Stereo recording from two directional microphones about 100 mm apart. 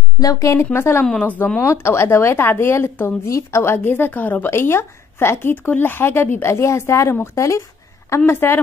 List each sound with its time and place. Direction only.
0.2 s speech: 35° left (ahead or behind)
1.0 s speech: 15° left (ahead or behind)
1.6 s speech: 25° left (ahead or behind)